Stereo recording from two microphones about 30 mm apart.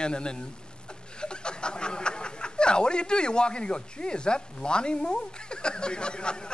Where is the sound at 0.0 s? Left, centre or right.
Left.